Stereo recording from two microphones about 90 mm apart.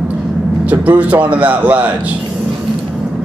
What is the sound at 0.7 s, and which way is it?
Speech, 15° right (ahead or behind).